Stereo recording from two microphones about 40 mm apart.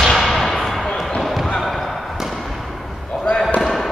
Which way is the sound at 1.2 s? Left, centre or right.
Centre.